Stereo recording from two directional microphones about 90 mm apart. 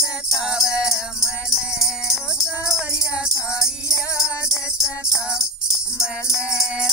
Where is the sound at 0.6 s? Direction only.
35° left (ahead or behind).